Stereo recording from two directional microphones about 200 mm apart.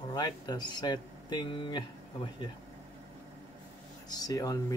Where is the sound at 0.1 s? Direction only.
20° left (ahead or behind).